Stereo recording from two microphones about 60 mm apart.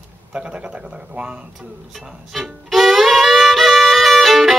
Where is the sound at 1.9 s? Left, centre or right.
Centre.